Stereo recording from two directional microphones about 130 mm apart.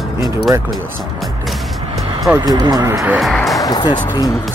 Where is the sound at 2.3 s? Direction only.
30° right (ahead or behind).